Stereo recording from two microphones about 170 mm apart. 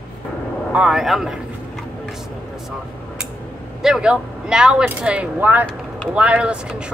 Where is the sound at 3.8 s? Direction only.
5° right (ahead or behind).